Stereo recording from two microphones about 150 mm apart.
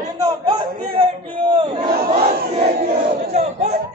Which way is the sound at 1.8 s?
75° right (ahead or behind).